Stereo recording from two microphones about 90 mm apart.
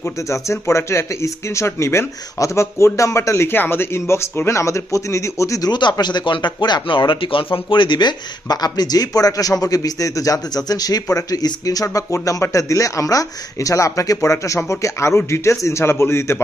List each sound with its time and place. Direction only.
0.0 s speech: 30° left (ahead or behind)
5.7 s speech: 55° left (ahead or behind); by 7.4 s 75° left (ahead or behind)
7.5 s speech: 65° left (ahead or behind); by 16.3 s 30° left (ahead or behind)